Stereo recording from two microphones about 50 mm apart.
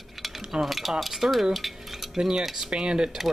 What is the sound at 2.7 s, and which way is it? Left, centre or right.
Speech, centre.